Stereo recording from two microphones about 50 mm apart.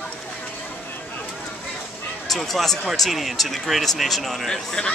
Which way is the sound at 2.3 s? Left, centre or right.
Centre.